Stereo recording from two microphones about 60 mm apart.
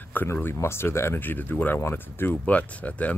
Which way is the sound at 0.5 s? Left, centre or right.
Left.